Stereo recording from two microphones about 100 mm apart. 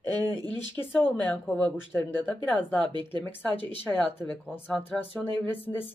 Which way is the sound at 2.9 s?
50° right (ahead or behind).